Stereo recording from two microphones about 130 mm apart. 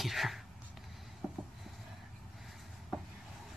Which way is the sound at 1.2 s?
5° right (ahead or behind).